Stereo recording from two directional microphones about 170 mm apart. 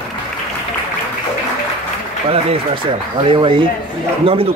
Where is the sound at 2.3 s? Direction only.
35° right (ahead or behind).